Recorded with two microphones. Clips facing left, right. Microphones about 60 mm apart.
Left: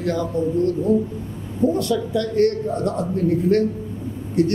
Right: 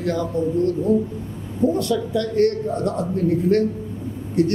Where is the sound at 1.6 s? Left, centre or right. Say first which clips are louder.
Even; left.